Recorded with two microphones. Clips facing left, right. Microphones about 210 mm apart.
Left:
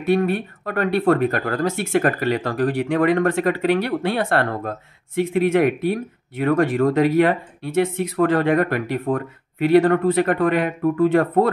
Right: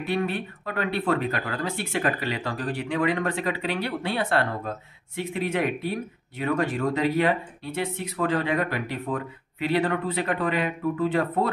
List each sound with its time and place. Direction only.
0.1 s speech: 50° left (ahead or behind)